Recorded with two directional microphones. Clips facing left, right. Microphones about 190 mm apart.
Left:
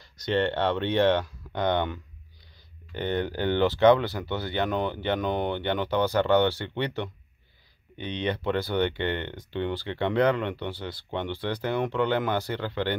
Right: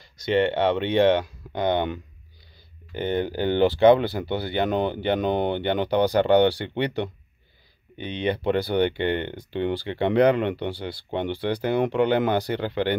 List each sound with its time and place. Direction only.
0.0 s speech: 10° right (ahead or behind)
2.9 s speech: 15° right (ahead or behind)